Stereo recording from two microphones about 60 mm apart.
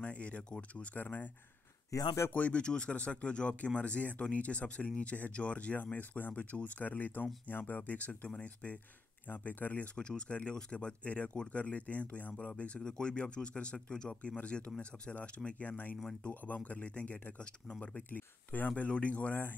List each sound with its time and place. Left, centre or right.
0.0 s speech: left
0.9 s speech: left
1.9 s speech: left
2.3 s speech: left
9.9 s speech: centre